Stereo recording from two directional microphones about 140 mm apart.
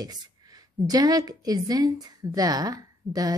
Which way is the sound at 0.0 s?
30° right (ahead or behind).